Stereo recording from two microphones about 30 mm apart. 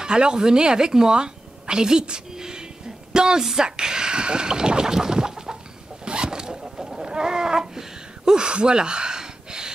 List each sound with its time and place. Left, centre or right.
0.0 s a woman's voice: right
3.1 s a sound: right
3.5 s speech: right
6.0 s zipper: right
7.1 s chicken: right
8.3 s gasp: right